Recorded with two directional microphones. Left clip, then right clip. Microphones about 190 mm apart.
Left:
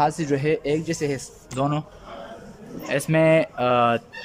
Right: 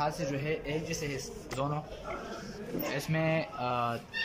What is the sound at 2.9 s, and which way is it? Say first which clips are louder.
Speech: left 14 dB; 40° left (ahead or behind).